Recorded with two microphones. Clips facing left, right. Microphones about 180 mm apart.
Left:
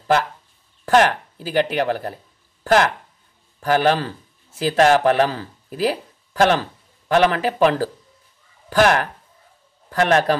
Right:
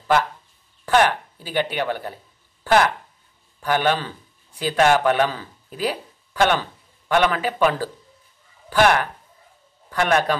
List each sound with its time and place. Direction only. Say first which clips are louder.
0.8 s speech: left 2 dB; 40° left (ahead or behind)
3.6 s speech: left 3 dB; 40° left (ahead or behind)